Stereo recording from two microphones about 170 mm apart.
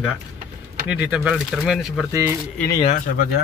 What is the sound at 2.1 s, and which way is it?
Speech, 15° right (ahead or behind).